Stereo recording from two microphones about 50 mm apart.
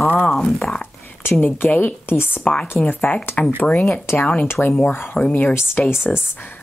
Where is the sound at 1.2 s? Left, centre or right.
Left.